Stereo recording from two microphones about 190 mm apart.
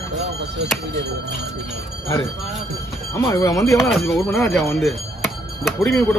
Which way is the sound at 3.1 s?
15° left (ahead or behind).